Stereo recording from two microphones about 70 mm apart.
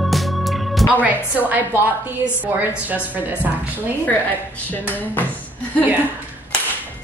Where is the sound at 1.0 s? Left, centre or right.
Right.